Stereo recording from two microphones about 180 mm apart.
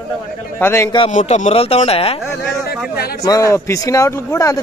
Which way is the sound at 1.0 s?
40° left (ahead or behind).